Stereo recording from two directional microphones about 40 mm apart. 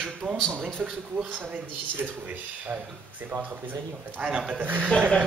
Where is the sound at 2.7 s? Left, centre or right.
Right.